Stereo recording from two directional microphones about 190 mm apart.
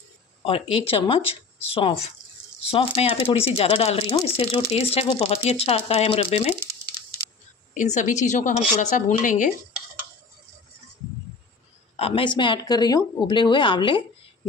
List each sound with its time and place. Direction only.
0.8 s speech: 30° left (ahead or behind)
7.7 s speech: 40° left (ahead or behind)
12.0 s speech: 25° left (ahead or behind)